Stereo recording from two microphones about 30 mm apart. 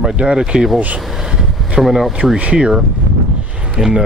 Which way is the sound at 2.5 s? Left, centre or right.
Right.